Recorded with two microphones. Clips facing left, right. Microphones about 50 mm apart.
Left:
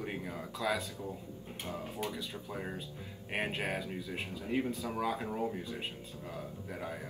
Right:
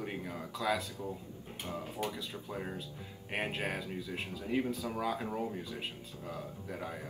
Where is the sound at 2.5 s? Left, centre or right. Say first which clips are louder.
Right 1 dB; centre.